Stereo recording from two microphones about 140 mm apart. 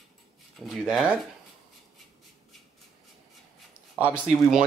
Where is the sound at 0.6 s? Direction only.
5° right (ahead or behind).